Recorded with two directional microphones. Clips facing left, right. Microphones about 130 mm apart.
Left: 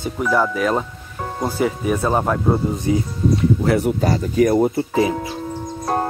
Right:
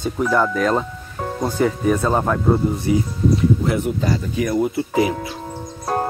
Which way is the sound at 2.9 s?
30° left (ahead or behind).